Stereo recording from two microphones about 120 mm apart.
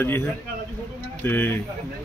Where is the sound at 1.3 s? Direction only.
15° left (ahead or behind).